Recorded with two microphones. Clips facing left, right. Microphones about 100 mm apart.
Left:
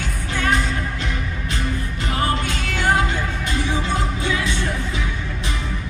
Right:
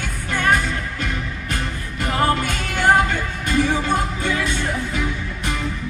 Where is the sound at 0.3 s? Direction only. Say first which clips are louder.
Right 2 dB; 50° right (ahead or behind).